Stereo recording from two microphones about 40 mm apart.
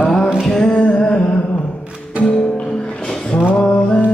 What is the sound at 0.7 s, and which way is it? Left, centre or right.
Music, left.